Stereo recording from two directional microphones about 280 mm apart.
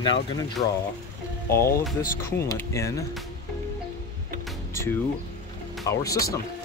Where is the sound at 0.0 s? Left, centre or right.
Centre.